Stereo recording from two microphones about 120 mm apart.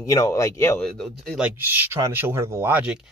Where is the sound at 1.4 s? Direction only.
15° right (ahead or behind).